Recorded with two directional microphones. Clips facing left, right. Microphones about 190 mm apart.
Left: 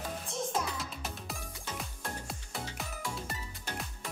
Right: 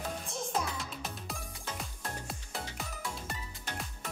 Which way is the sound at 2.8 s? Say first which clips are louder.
Left 1 dB; centre (ahead or behind).